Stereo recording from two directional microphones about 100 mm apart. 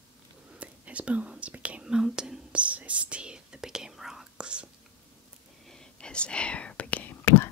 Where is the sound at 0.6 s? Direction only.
15° right (ahead or behind).